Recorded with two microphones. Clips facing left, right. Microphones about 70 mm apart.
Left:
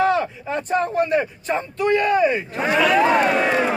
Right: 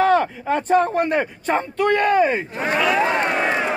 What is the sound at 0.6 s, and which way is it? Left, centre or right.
Speech, right.